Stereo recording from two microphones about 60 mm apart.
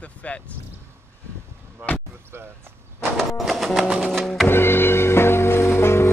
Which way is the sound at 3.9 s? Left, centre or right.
Centre.